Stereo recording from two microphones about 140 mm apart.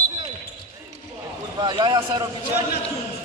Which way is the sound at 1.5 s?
35° right (ahead or behind).